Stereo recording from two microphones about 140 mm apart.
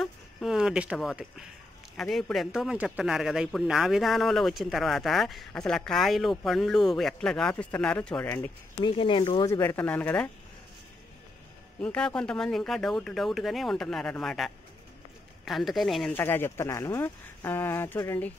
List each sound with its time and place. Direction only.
0.0 s a sound: centre (ahead or behind)
2.0 s a man's voice: 5° left (ahead or behind)
8.8 s speech: 35° left (ahead or behind)
9.5 s speech: 15° left (ahead or behind)
11.8 s a man's voice: 10° left (ahead or behind)
16.1 s speech: 15° left (ahead or behind)